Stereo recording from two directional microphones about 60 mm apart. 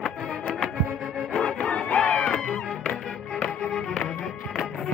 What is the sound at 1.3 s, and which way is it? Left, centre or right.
Music, centre.